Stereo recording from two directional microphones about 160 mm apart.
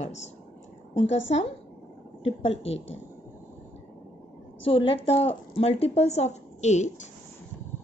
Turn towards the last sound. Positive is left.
turn(degrees=45)  # may be behind; listen again after turning